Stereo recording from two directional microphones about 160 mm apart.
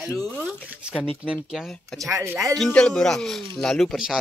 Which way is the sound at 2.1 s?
15° right (ahead or behind).